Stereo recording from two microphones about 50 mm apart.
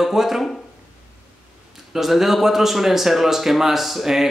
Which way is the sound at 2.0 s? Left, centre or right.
Centre.